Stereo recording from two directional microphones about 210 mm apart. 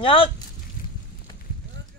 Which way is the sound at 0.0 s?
25° left (ahead or behind).